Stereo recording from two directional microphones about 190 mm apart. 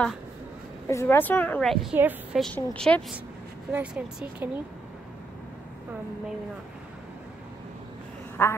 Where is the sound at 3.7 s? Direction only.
10° right (ahead or behind).